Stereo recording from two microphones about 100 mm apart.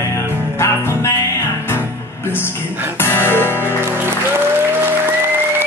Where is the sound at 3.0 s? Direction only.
20° left (ahead or behind).